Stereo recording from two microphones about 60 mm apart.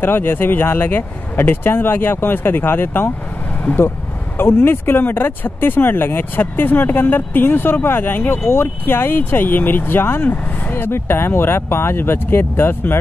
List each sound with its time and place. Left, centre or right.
0.0 s speech: left